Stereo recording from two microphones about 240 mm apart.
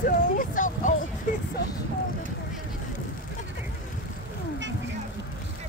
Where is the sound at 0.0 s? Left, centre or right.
Left.